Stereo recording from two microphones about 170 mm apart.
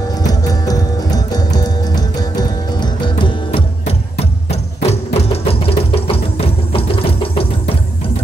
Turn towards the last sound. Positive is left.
turn(degrees=35)  # may be behind; listen again after turning